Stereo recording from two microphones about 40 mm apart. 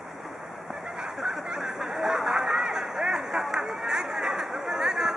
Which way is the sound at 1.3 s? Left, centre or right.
Centre.